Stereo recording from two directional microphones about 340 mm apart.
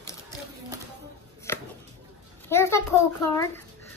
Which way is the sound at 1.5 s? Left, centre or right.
Centre.